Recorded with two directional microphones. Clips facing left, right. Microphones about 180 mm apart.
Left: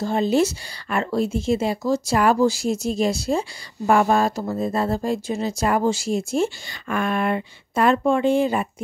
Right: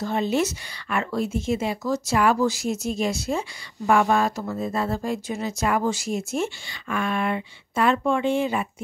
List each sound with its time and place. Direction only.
0.0 s speech: 35° left (ahead or behind)
6.9 s speech: 45° left (ahead or behind)